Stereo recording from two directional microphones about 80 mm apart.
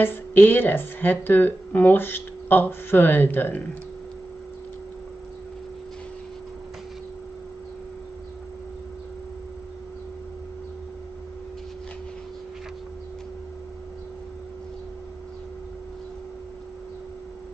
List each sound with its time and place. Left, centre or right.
0.0 s speech: left